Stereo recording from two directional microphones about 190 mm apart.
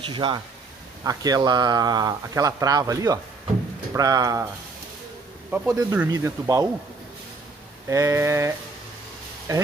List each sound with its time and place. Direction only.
0.0 s speech: 25° right (ahead or behind)
5.5 s speech: 10° right (ahead or behind)
7.9 s speech: 15° right (ahead or behind)